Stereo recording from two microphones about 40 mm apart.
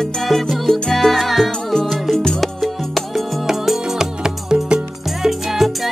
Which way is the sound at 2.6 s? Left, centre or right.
Centre.